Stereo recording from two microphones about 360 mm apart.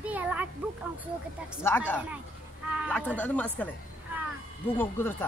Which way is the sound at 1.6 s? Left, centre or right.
Centre.